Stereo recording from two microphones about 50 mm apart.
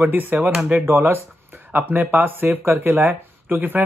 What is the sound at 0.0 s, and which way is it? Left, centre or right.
Speech, right.